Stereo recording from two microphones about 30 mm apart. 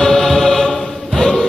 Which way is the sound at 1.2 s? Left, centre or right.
Centre.